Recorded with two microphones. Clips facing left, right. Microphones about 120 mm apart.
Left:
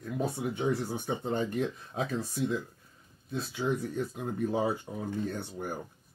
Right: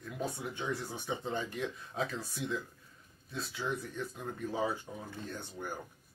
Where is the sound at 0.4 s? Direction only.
55° left (ahead or behind).